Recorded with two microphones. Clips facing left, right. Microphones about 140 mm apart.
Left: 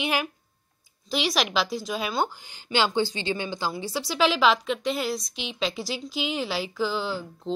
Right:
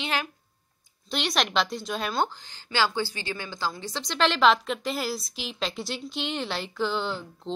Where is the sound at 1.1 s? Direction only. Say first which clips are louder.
Left 2 dB; centre (ahead or behind).